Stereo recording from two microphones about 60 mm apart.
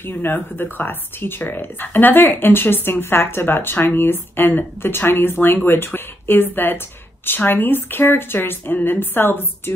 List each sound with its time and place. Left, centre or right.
0.0 s speech: left